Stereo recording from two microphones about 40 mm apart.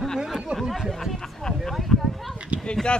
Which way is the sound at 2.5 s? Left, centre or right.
Right.